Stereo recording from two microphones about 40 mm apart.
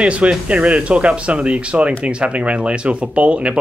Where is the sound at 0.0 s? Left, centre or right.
Right.